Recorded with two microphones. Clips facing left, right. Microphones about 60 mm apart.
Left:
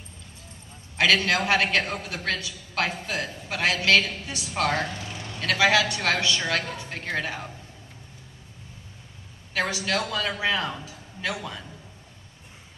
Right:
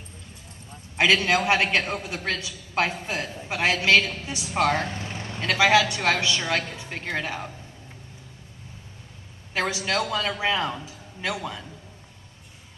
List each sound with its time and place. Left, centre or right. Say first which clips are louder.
0.9 s a woman's voice: right 1 dB; right
6.6 s a sound: left 2 dB; left
7.2 s a man's voice: right 1 dB; centre
9.5 s a woman's voice: even; right